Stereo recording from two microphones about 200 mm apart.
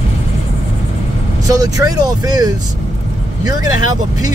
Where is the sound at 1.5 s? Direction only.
20° right (ahead or behind).